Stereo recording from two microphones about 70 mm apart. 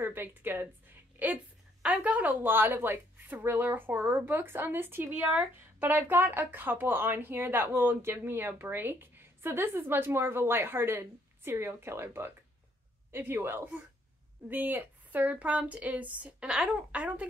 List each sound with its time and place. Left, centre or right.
0.0 s speech: right
1.2 s a sound: centre
2.0 s speech: right